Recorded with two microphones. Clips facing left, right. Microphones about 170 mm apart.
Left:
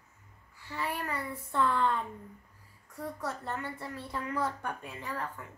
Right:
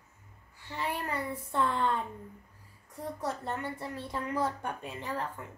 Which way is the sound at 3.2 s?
20° right (ahead or behind).